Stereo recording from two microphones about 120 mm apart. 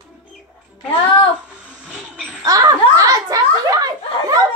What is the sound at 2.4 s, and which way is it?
Speech, 30° right (ahead or behind).